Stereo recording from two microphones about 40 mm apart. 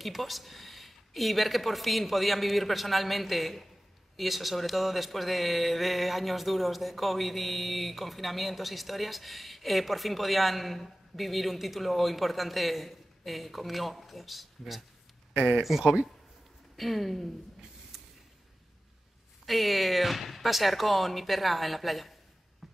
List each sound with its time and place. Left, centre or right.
0.0 s speech: centre
15.8 s speech: centre
16.7 s speech: centre
17.9 s a sound: centre
19.4 s speech: centre
22.6 s a sound: centre